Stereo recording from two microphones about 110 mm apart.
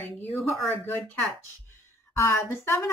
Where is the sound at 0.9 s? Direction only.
20° left (ahead or behind).